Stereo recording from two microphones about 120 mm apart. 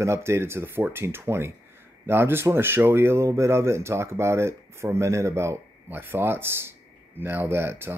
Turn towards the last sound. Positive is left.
turn(degrees=-20)  # may be behind; listen again after turning